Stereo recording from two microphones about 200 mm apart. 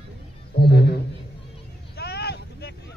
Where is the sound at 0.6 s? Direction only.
50° left (ahead or behind).